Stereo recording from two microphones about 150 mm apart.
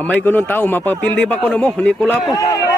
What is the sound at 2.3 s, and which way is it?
Speech, 25° left (ahead or behind).